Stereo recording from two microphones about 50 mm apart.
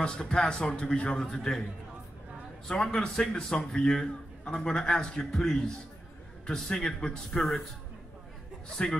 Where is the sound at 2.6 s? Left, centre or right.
Centre.